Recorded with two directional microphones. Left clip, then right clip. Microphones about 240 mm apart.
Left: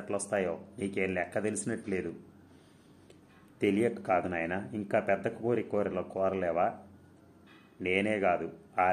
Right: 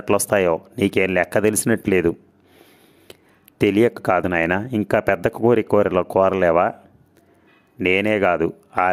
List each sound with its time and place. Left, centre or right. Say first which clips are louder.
0.1 s speech: right 15 dB; right
7.8 s speech: right 11 dB; right